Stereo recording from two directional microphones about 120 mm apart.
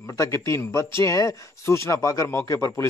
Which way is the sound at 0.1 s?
25° left (ahead or behind).